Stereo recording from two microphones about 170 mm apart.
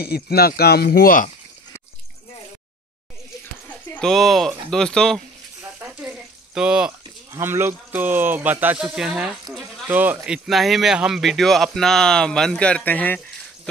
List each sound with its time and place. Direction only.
0.0 s speech: 65° left (ahead or behind)
3.9 s speech: centre (ahead or behind)
5.8 s a sound: 5° right (ahead or behind)
7.3 s speech: 15° right (ahead or behind)
9.8 s speech: 10° right (ahead or behind); by 13.2 s 10° left (ahead or behind)